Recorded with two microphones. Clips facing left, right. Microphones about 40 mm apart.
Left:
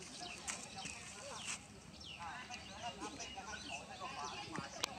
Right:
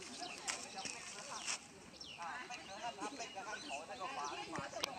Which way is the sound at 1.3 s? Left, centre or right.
Right.